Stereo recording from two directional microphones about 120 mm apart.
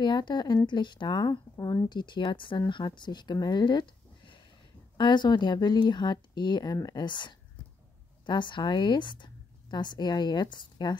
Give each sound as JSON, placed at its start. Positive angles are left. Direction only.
{"t": 0.0, "sound": "a woman's voice", "side_deg": 40}